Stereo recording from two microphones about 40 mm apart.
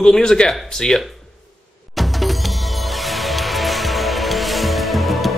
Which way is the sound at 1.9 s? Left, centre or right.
Centre.